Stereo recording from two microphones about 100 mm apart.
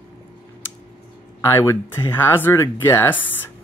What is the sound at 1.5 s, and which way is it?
Speech, 25° left (ahead or behind).